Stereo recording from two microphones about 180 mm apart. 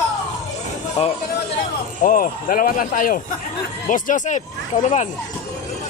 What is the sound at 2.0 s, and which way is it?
Speech, 50° left (ahead or behind).